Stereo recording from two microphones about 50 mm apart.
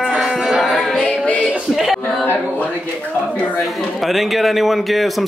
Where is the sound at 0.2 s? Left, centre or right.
Centre.